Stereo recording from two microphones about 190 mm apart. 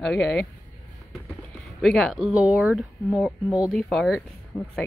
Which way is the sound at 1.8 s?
Centre (ahead or behind).